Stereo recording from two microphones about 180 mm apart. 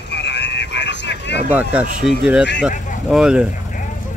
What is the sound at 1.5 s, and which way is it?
Speech, 5° right (ahead or behind).